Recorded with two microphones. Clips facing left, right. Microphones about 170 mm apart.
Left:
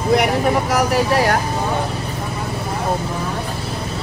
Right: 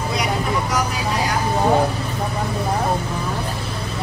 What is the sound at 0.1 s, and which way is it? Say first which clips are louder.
Vehicle: left 8 dB; 65° left (ahead or behind).